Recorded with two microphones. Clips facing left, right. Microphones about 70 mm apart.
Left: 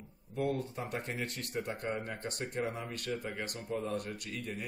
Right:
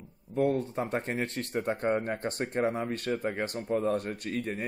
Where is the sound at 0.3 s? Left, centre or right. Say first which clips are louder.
Right 7 dB; right.